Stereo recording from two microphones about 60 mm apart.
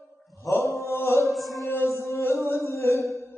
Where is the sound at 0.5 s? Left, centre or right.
Left.